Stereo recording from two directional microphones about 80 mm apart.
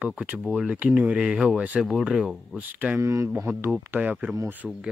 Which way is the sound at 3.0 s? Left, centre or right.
Right.